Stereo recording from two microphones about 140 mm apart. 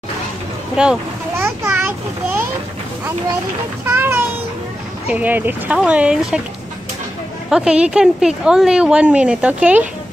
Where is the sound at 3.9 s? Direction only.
15° right (ahead or behind).